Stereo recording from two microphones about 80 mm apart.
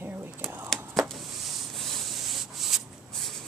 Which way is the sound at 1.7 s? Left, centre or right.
Centre.